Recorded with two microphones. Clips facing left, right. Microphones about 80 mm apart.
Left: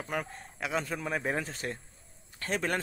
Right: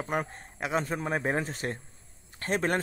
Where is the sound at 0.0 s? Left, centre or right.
Right.